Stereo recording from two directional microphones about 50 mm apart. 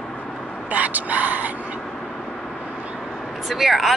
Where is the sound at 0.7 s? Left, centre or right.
Right.